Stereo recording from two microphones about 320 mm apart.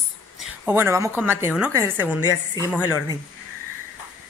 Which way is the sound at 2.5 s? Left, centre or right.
Centre.